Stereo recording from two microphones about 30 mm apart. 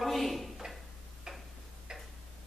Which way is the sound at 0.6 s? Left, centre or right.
Centre.